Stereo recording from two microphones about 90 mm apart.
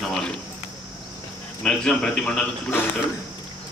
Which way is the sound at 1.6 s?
10° left (ahead or behind).